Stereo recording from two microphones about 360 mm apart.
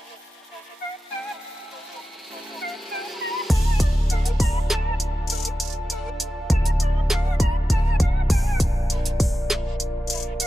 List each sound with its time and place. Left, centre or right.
2.6 s music: centre